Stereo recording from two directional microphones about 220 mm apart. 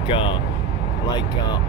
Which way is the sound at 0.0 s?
25° left (ahead or behind).